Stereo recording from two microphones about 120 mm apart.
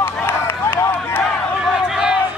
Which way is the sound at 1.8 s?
5° right (ahead or behind).